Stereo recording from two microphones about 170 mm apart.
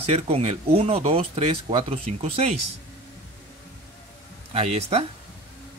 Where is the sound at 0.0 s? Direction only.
35° right (ahead or behind).